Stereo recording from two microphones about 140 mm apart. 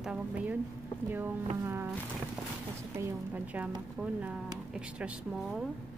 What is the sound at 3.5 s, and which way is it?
Speech, 10° right (ahead or behind).